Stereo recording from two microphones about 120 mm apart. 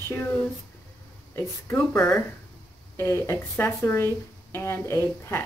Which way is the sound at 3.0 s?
20° left (ahead or behind).